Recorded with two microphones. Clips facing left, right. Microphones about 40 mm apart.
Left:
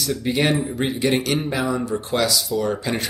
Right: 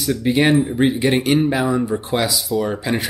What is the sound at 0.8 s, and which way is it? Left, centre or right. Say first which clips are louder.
Speech: right 4 dB; centre.